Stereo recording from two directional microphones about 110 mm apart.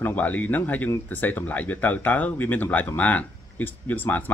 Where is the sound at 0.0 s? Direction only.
15° left (ahead or behind).